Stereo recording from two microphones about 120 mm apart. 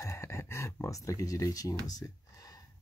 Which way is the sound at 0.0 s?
25° left (ahead or behind).